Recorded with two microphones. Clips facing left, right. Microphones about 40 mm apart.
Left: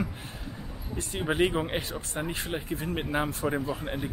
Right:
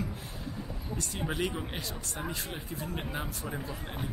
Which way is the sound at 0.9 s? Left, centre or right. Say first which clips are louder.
Left 6 dB; left.